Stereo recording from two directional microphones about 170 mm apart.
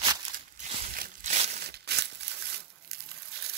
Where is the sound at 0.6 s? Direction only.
35° right (ahead or behind).